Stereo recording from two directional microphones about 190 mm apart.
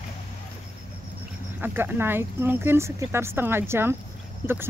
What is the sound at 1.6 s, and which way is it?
Speech, 10° right (ahead or behind).